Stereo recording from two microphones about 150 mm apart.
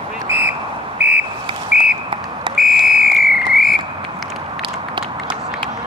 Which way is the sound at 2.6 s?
Centre (ahead or behind).